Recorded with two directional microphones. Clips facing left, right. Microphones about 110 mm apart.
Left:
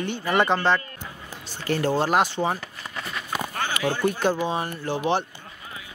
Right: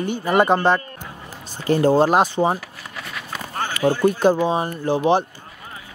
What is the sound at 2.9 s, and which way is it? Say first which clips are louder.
Horse: even; centre (ahead or behind).